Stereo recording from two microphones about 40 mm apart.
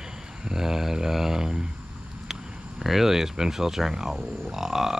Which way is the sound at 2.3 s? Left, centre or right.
Centre.